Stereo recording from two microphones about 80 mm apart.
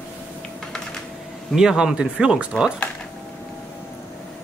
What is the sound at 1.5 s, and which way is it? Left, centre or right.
Speech, centre.